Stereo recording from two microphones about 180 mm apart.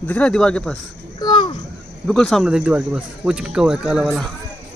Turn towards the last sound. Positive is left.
turn(degrees=-5)  # may be behind; listen again after turning